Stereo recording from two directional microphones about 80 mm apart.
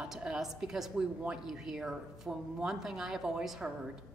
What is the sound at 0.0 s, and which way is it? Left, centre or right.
A woman's voice, centre.